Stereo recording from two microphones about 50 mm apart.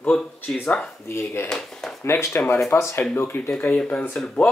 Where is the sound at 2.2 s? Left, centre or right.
Left.